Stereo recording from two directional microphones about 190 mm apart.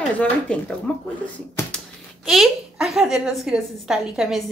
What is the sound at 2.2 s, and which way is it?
A woman's voice, centre (ahead or behind).